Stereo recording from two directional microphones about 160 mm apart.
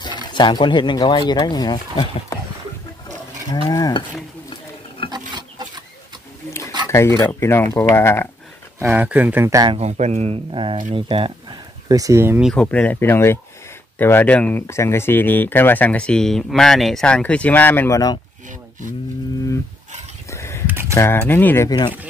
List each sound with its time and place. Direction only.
0.0 s speech: 30° left (ahead or behind)
3.6 s stir: 20° left (ahead or behind)
5.1 s filing: 25° right (ahead or behind)
6.9 s speech: 15° left (ahead or behind)
8.7 s speech: 15° right (ahead or behind)
9.7 s speech: 40° right (ahead or behind)
11.9 s speech: 20° right (ahead or behind)
12.4 s speech: centre (ahead or behind); by 18.2 s 20° left (ahead or behind)
20.2 s a sound: 15° left (ahead or behind)
20.9 s speech: 15° left (ahead or behind)
21.6 s speech: 25° left (ahead or behind)